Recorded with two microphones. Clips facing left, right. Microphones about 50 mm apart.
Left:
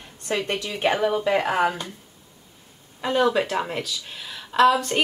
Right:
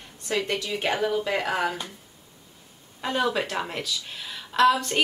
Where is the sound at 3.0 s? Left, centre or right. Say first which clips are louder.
Left 5 dB; centre.